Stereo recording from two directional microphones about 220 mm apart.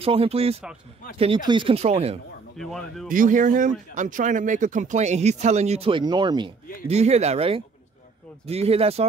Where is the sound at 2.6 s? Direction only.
Centre (ahead or behind).